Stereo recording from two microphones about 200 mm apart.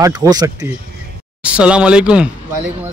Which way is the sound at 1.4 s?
5° right (ahead or behind).